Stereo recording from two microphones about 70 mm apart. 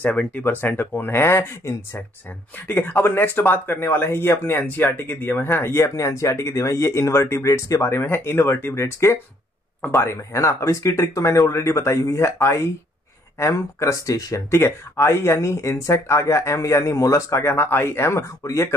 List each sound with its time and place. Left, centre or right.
0.0 s speech: left
2.6 s speech: left
5.9 s speech: left
10.3 s speech: left
14.5 s speech: left